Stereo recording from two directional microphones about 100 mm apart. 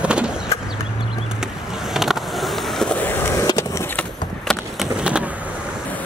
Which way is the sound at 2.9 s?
20° left (ahead or behind).